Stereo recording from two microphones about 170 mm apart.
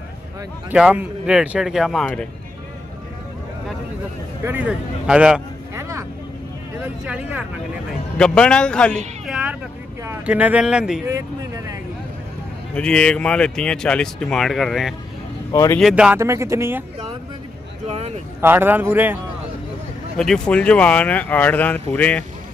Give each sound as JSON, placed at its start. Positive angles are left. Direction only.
{"t": 0.7, "sound": "speech", "side_deg": -10}
{"t": 4.5, "sound": "speech", "side_deg": -10}
{"t": 5.8, "sound": "vehicle", "side_deg": -15}
{"t": 7.1, "sound": "speech", "side_deg": -5}
{"t": 8.2, "sound": "speech", "side_deg": 5}
{"t": 9.3, "sound": "vehicle", "side_deg": -10}
{"t": 10.0, "sound": "speech", "side_deg": -10}
{"t": 11.1, "sound": "speech", "side_deg": -20}
{"t": 12.7, "sound": "speech", "side_deg": 5}
{"t": 15.5, "sound": "speech", "side_deg": 20}
{"t": 15.8, "sound": "speech", "side_deg": -5}
{"t": 17.8, "sound": "a sound", "side_deg": -40}
{"t": 18.4, "sound": "speech", "side_deg": -10}
{"t": 20.2, "sound": "speech", "side_deg": 5}